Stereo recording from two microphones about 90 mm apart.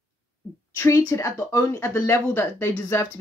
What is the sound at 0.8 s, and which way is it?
Speech, 35° left (ahead or behind).